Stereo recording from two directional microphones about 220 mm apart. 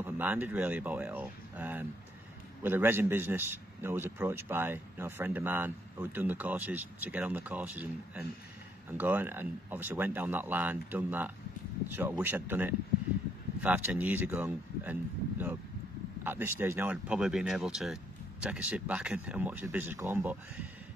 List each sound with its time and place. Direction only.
0.0 s a man's voice: 10° right (ahead or behind)